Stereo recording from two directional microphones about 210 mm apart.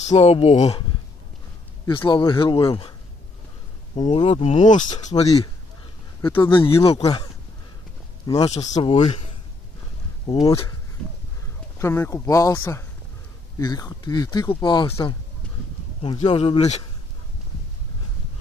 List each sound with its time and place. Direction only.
0.1 s speech: 30° left (ahead or behind)
1.9 s speech: 25° left (ahead or behind)
4.0 s speech: 25° left (ahead or behind)
8.3 s speech: 20° left (ahead or behind)
10.2 s speech: 20° left (ahead or behind)
11.8 s speech: 15° left (ahead or behind); by 16.8 s 30° left (ahead or behind)